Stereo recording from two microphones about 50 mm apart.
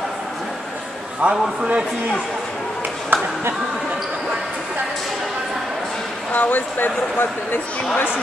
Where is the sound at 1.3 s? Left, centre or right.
Centre.